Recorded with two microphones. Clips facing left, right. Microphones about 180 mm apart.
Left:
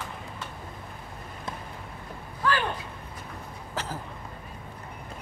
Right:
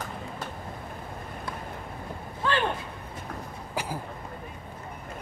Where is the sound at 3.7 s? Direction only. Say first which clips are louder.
Right 2 dB; 10° right (ahead or behind).